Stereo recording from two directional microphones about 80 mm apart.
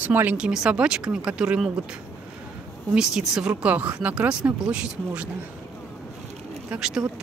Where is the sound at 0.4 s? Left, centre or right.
Centre.